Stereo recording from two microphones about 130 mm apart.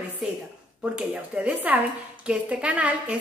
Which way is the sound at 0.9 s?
10° right (ahead or behind).